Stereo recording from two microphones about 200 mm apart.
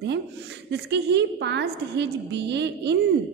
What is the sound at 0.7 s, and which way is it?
A woman's voice, 60° right (ahead or behind).